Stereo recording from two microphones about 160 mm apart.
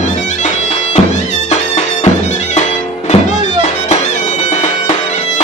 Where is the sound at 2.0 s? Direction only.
45° left (ahead or behind).